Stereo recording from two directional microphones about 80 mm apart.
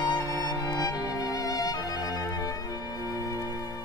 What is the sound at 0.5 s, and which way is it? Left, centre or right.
Music, left.